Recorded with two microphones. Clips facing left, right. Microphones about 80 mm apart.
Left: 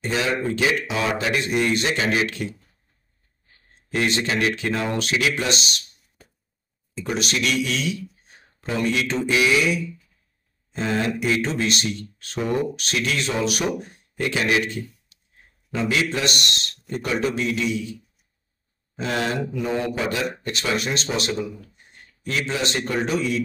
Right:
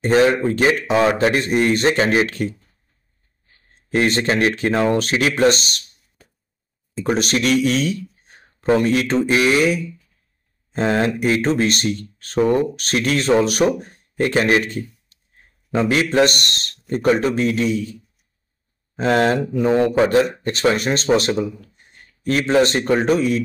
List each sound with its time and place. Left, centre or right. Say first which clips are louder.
0.0 s speech: right 9 dB; right
3.9 s speech: right 5 dB; right
7.0 s speech: right 6 dB; right
18.9 s speech: right 8 dB; right